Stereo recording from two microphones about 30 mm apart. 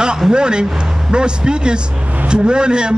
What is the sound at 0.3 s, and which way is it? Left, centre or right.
A man's voice, right.